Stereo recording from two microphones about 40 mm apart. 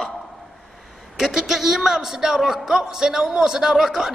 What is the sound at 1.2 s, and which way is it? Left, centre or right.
A man's voice, centre.